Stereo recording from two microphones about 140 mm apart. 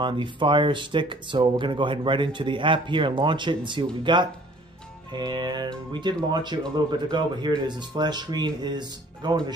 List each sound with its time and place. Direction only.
0.0 s speech: 35° right (ahead or behind)